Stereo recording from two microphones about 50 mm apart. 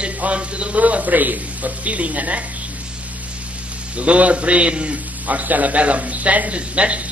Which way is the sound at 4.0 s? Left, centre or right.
Right.